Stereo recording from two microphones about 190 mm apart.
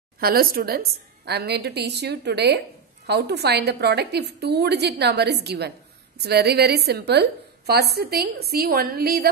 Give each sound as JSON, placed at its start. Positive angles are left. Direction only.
{"t": 0.2, "sound": "a woman's voice", "side_deg": -50}